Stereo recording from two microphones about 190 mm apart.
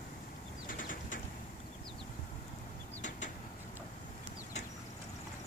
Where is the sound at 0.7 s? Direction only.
45° left (ahead or behind).